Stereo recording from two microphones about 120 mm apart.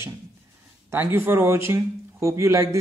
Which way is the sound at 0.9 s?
20° right (ahead or behind).